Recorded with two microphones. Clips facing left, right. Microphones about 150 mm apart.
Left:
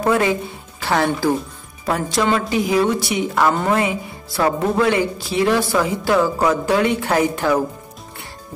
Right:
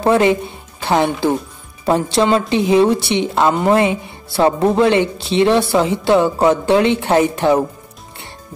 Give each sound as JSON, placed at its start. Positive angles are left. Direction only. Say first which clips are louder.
{"t": 0.0, "sound": "a woman's voice", "louder": "right 4 dB", "side_deg": -25}